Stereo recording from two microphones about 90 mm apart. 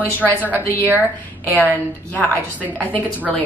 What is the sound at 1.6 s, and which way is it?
A woman's voice, 20° left (ahead or behind).